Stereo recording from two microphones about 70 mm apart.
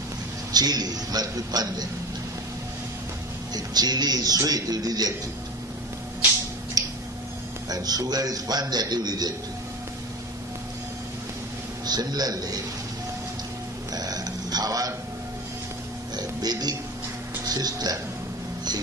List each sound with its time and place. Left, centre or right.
0.5 s a man's voice: right
3.5 s a man's voice: right
6.8 s tick-tock: right
7.7 s a man's voice: right
11.8 s a man's voice: right
13.9 s a sound: right
16.3 s a man's voice: right